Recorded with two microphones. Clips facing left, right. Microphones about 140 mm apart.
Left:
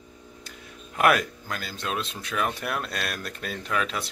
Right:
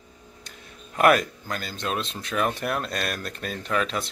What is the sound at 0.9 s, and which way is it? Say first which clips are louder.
Speech: right 3 dB; centre (ahead or behind).